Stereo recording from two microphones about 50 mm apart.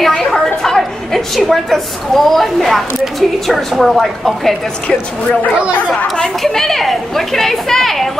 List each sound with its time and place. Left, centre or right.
0.1 s a woman's voice: centre
5.2 s speech: left
6.4 s a woman's voice: centre